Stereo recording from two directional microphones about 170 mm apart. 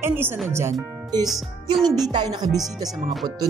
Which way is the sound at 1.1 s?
25° right (ahead or behind).